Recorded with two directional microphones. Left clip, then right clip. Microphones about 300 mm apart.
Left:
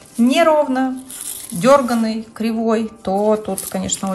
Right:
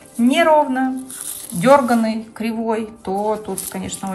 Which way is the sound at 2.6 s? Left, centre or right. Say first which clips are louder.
Left 4 dB; centre.